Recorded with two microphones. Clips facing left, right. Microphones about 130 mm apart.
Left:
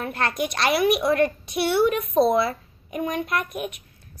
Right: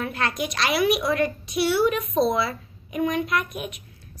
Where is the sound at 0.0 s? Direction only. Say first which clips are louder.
Left 1 dB; 50° left (ahead or behind).